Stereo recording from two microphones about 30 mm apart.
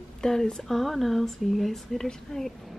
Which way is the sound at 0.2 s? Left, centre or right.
Centre.